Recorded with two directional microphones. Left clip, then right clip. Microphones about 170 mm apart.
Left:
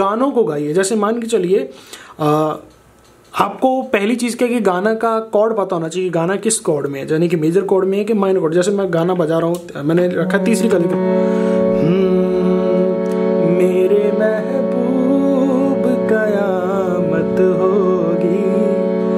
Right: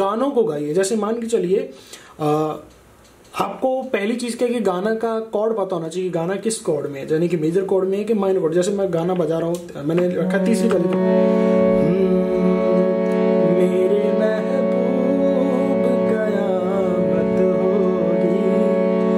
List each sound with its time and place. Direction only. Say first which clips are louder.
0.0 s speech: left 3 dB; 20° left (ahead or behind)
11.0 s music: left 1 dB; centre (ahead or behind)
11.9 s music: left 3 dB; 25° left (ahead or behind)
12.4 s music: left 2 dB; centre (ahead or behind)
16.3 s music: left 3 dB; 20° left (ahead or behind)
17.0 s music: left 3 dB; centre (ahead or behind)